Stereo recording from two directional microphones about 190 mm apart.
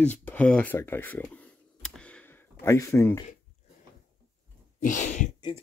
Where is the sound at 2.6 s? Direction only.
15° left (ahead or behind).